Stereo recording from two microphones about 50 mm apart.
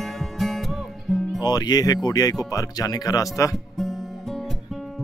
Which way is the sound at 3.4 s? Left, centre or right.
Left.